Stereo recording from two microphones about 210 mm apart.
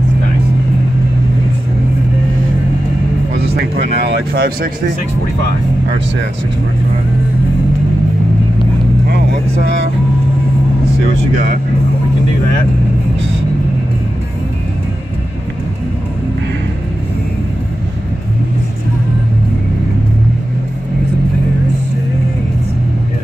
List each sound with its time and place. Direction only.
4.3 s speech: 50° right (ahead or behind)